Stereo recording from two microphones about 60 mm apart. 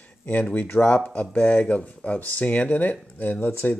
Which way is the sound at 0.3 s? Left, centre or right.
Left.